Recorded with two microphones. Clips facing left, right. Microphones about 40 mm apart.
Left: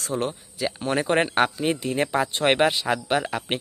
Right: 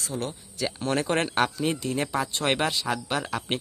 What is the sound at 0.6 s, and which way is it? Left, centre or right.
Speech, centre.